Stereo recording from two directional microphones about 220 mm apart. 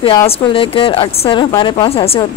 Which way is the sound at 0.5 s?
25° left (ahead or behind).